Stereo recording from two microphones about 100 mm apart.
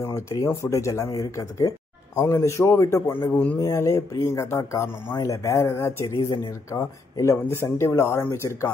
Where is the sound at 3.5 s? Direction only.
35° left (ahead or behind).